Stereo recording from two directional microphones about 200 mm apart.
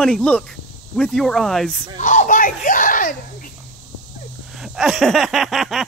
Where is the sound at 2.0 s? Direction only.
40° left (ahead or behind).